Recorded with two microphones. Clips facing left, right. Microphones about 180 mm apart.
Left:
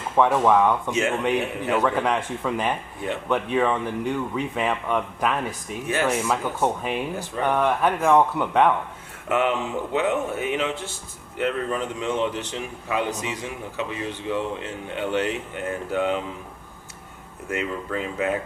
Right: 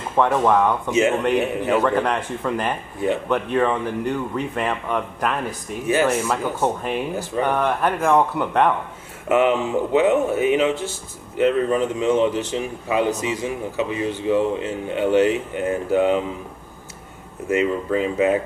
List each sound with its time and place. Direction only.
0.1 s speech: centre (ahead or behind)
17.5 s speech: 5° right (ahead or behind)